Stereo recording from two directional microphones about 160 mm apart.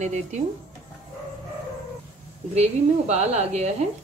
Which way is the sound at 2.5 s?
40° right (ahead or behind).